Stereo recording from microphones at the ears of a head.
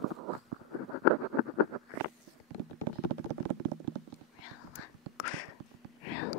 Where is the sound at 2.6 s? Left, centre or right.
Right.